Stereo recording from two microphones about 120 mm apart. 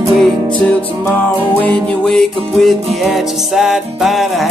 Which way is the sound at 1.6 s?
10° left (ahead or behind).